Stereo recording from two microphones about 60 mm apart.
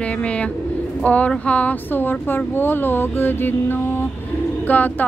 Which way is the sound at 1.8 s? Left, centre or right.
Left.